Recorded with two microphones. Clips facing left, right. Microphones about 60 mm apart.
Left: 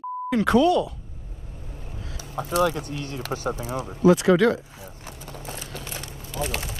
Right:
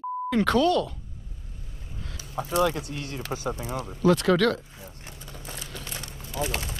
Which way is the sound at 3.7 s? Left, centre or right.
Left.